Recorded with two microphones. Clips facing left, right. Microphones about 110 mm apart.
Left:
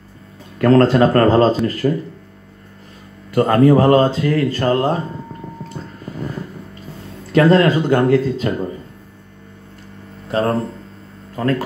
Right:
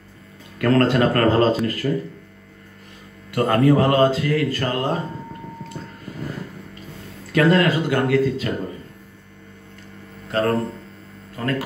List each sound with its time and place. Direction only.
0.6 s speech: 35° left (ahead or behind)
1.8 s speech: 40° left (ahead or behind)
3.3 s speech: 30° left (ahead or behind)
7.3 s speech: 30° left (ahead or behind)
10.2 s a sound: 30° left (ahead or behind)